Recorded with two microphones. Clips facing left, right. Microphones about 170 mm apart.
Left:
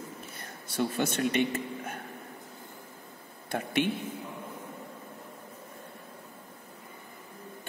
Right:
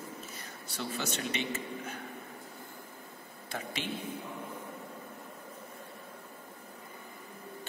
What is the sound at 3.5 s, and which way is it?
Speech, 60° left (ahead or behind).